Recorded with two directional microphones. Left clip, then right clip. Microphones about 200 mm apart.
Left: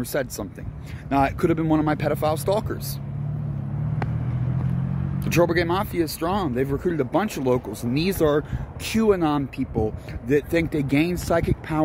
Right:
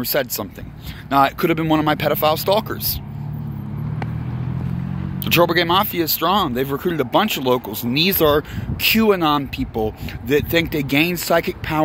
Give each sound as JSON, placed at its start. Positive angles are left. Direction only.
{"t": 0.0, "sound": "speech", "side_deg": 0}
{"t": 5.2, "sound": "speech", "side_deg": 5}